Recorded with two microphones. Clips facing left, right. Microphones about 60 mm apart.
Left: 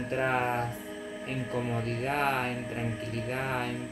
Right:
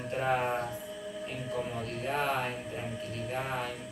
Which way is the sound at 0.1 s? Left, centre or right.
Left.